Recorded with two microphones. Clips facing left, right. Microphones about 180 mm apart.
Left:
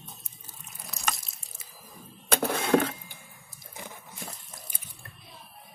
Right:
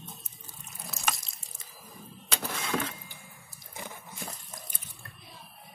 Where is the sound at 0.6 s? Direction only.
Centre (ahead or behind).